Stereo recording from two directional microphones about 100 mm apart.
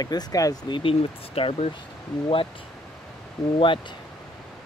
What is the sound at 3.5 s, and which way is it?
Speech, 60° left (ahead or behind).